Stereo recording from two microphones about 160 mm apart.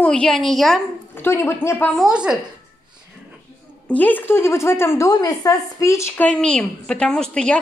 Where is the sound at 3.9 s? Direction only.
10° left (ahead or behind).